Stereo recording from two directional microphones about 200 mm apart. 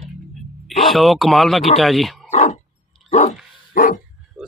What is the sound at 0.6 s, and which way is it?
Speech, centre (ahead or behind).